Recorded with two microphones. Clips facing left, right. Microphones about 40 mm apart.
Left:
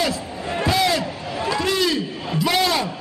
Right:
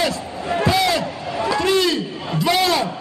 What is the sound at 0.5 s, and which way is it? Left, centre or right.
Slam, centre.